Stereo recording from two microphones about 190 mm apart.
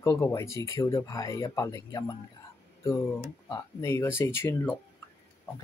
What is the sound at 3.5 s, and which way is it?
Speech, 15° left (ahead or behind).